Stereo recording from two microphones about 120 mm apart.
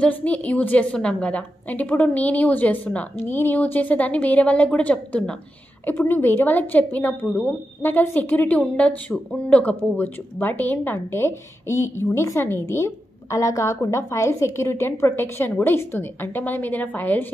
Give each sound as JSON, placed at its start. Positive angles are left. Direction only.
{"t": 0.0, "sound": "a woman's voice", "side_deg": 10}